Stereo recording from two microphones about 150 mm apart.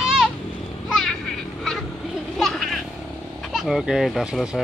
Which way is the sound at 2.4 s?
Centre (ahead or behind).